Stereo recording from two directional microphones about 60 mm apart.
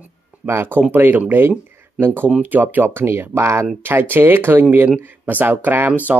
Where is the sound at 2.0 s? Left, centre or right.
Right.